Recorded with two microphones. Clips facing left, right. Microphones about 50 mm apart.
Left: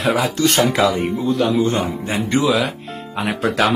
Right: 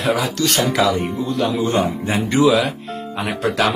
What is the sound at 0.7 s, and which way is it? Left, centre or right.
Speech, centre.